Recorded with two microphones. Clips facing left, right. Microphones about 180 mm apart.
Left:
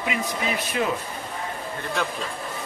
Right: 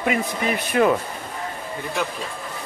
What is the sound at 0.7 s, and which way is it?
Speech, 60° right (ahead or behind).